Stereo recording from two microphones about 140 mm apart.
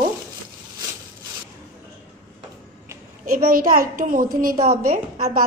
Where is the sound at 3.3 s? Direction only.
85° right.